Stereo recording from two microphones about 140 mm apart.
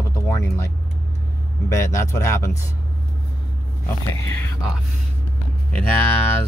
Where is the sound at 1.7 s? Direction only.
20° left (ahead or behind).